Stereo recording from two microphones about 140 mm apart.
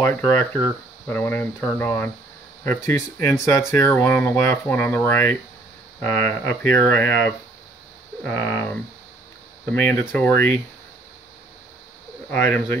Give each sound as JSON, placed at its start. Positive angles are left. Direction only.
{"t": 0.0, "sound": "speech", "side_deg": 15}
{"t": 9.7, "sound": "speech", "side_deg": 10}
{"t": 12.3, "sound": "speech", "side_deg": 15}